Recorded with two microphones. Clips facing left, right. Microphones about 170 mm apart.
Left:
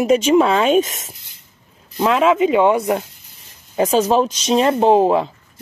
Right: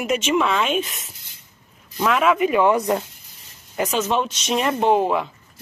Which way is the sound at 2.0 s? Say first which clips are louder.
Left 4 dB; 25° left (ahead or behind).